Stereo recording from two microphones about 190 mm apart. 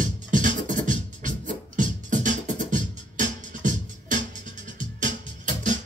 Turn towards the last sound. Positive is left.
turn(degrees=-40)  # may be behind; listen again after turning